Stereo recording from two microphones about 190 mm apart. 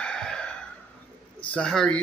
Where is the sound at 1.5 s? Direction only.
5° left (ahead or behind).